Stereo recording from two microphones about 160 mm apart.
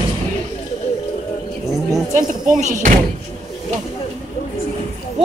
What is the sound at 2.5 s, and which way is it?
Speech, 50° right (ahead or behind).